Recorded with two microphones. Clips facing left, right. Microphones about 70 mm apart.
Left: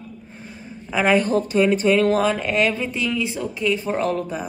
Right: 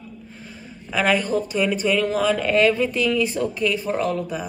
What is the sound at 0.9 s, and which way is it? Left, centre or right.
Speech, centre.